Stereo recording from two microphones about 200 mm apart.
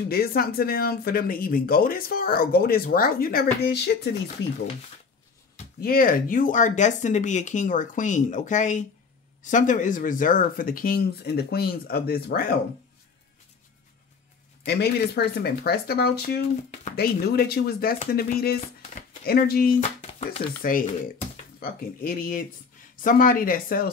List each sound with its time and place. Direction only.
0.1 s speech: 50° left (ahead or behind)
5.8 s speech: 45° left (ahead or behind)
14.7 s speech: 55° left (ahead or behind)